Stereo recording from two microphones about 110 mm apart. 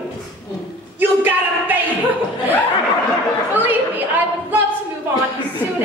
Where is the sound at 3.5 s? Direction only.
15° right (ahead or behind).